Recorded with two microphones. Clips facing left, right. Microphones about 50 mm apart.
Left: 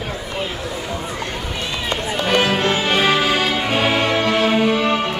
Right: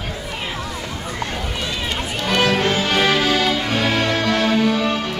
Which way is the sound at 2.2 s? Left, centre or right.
Left.